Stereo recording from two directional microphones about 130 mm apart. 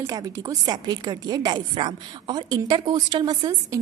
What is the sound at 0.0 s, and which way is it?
A woman's voice, 25° right (ahead or behind).